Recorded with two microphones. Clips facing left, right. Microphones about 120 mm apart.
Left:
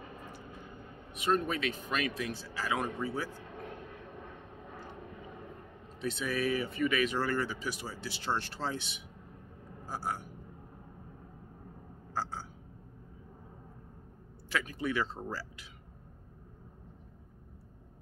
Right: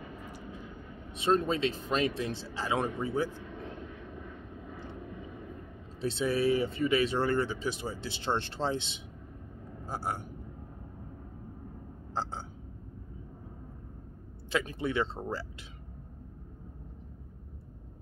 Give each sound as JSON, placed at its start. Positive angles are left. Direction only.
{"t": 1.1, "sound": "speech", "side_deg": -30}
{"t": 5.9, "sound": "speech", "side_deg": -30}
{"t": 12.1, "sound": "speech", "side_deg": -25}
{"t": 14.5, "sound": "speech", "side_deg": -25}